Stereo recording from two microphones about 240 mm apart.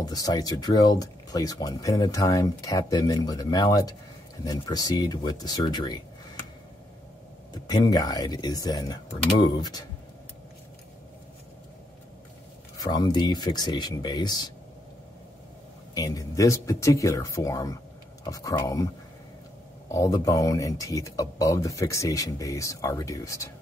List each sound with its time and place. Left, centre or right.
0.0 s speech: centre
7.5 s speech: centre
12.7 s speech: centre
15.9 s speech: centre
19.9 s speech: centre